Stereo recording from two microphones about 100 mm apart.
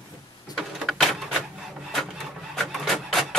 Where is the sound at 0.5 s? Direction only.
Centre (ahead or behind).